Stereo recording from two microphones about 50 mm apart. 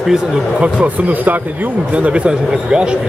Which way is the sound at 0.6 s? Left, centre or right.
Right.